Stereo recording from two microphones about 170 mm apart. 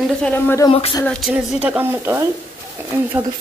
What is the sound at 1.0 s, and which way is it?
Speech, 5° left (ahead or behind).